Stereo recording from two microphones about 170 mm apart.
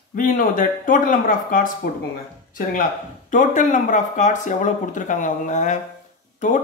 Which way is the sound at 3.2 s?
50° left (ahead or behind).